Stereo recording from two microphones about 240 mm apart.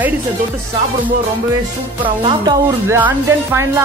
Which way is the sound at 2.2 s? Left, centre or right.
Right.